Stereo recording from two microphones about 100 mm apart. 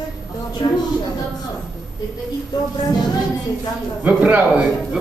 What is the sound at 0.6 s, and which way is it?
Speech, 45° left (ahead or behind).